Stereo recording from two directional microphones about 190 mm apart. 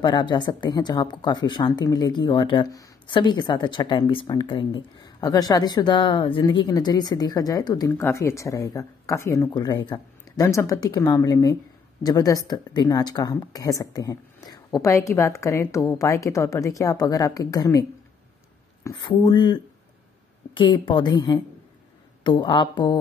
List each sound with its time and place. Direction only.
0.0 s speech: 25° left (ahead or behind)
18.9 s speech: 25° left (ahead or behind)